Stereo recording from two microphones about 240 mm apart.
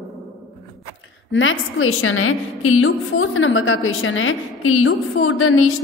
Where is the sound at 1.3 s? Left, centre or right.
Left.